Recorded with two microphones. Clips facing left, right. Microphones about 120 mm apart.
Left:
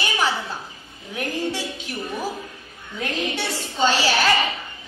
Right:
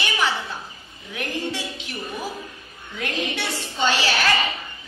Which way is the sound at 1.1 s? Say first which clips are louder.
Left 2 dB; 40° left (ahead or behind).